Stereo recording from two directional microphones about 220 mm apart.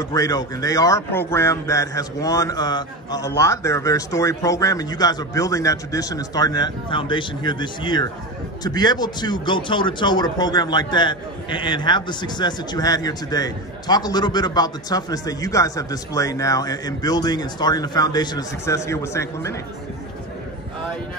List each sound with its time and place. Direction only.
0.0 s a man's voice: 15° left (ahead or behind)